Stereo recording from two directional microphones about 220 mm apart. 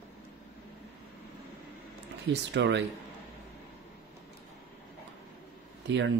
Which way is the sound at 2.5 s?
55° right (ahead or behind).